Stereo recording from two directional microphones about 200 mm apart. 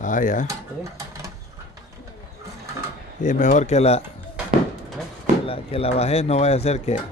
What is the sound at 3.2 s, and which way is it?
Speech, 40° left (ahead or behind).